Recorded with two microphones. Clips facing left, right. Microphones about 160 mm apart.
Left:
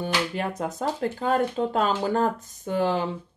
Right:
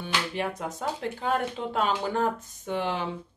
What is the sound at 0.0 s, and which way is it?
Speech, 40° left (ahead or behind).